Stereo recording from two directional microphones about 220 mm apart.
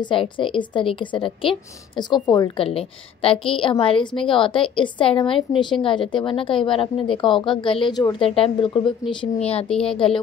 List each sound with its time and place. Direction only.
0.0 s a woman's voice: 25° left (ahead or behind)
9.7 s speech: 5° left (ahead or behind)